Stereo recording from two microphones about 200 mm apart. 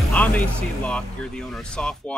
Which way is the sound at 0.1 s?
5° left (ahead or behind).